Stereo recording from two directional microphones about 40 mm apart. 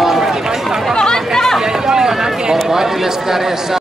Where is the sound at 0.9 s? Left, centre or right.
Centre.